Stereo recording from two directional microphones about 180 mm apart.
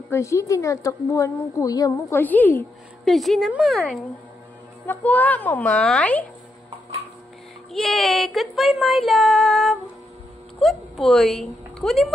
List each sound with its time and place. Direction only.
0.1 s a woman's voice: 15° left (ahead or behind)
3.1 s child singing: centre (ahead or behind)
4.8 s a woman's voice: 10° left (ahead or behind)
7.7 s child singing: centre (ahead or behind)
10.6 s a woman's voice: centre (ahead or behind)